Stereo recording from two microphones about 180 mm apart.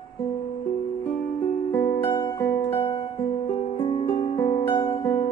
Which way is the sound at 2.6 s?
30° left (ahead or behind).